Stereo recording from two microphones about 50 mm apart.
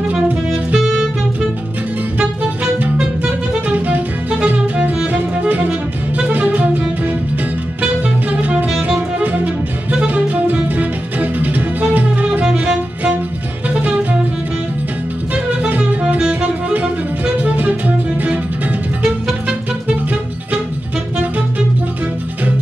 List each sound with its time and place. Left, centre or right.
3.0 s music: right
7.8 s music: right
12.4 s music: centre
13.7 s music: right
16.2 s music: centre
19.4 s music: right